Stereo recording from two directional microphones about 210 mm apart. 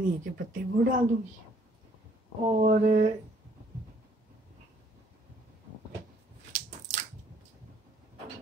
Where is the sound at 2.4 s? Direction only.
35° right (ahead or behind).